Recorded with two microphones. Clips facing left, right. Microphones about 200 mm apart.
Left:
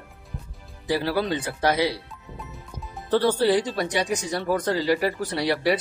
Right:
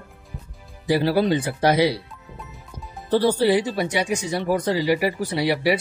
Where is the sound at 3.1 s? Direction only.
10° right (ahead or behind).